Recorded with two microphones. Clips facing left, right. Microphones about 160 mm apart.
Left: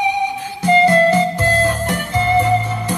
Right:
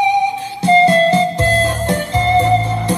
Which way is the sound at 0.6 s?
30° right (ahead or behind).